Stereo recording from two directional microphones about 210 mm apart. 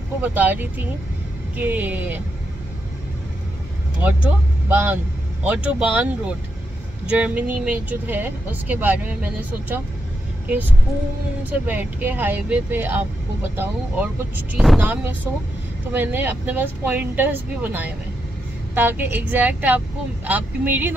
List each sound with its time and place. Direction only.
0.2 s speech: 10° right (ahead or behind)
4.0 s speech: 10° right (ahead or behind)
11.6 s speech: 10° right (ahead or behind)